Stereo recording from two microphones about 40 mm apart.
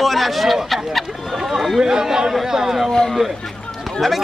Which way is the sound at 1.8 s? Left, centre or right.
Centre.